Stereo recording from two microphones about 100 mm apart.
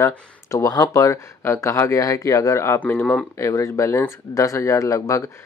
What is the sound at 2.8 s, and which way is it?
Speech, 15° left (ahead or behind).